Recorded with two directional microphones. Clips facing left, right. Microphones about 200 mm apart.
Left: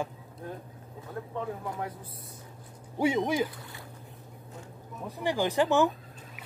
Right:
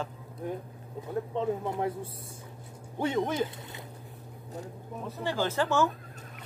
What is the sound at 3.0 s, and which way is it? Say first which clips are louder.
Speech: left 2 dB; 10° left (ahead or behind).